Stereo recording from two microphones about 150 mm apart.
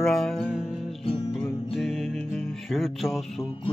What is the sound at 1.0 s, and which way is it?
Music, 40° left (ahead or behind).